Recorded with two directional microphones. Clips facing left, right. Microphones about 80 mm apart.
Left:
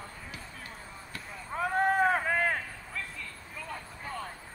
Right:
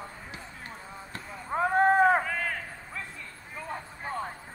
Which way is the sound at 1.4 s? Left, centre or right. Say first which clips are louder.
Right 5 dB; right.